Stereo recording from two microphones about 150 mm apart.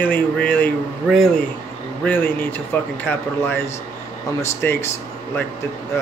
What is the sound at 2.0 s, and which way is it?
Speech, 10° left (ahead or behind).